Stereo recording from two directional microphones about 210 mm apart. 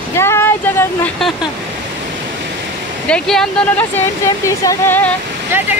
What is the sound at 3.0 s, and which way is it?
Speech, 5° left (ahead or behind).